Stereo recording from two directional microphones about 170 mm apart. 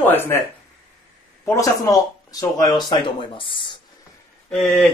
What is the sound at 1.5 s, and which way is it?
Speech, 20° left (ahead or behind).